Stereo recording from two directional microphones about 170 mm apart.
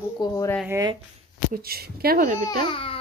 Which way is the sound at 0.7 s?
20° right (ahead or behind).